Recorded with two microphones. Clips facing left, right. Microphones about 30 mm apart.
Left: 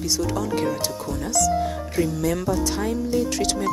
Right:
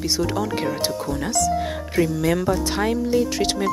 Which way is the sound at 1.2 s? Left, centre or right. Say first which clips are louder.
Left 1 dB; right.